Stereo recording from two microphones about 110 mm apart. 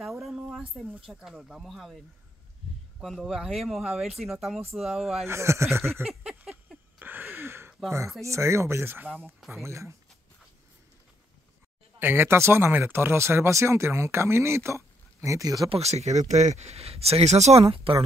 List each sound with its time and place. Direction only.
0.0 s a sound: centre (ahead or behind)
0.9 s speech: 10° right (ahead or behind)
5.2 s speech: 25° right (ahead or behind)
6.7 s a sound: 15° right (ahead or behind)
8.2 s speech: 25° right (ahead or behind)
12.0 s speech: 20° right (ahead or behind)
15.7 s speech: 80° right; by 18.0 s 60° right (ahead or behind)